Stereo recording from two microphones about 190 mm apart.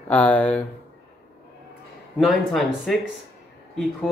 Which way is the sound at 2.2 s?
Centre (ahead or behind).